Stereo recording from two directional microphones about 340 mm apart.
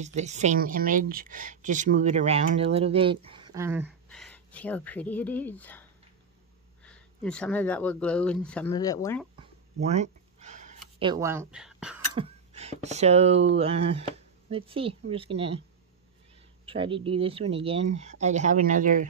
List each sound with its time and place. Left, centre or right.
0.0 s a woman's voice: centre
9.4 s a sound: centre
11.0 s speech: centre
12.2 s a woman's voice: centre
16.6 s a woman's voice: centre